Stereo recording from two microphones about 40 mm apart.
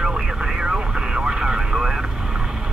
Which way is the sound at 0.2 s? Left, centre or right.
Centre.